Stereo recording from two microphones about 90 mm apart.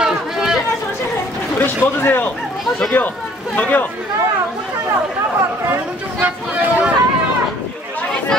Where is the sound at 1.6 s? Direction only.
20° left (ahead or behind).